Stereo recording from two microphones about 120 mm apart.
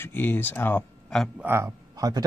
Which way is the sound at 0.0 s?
15° left (ahead or behind).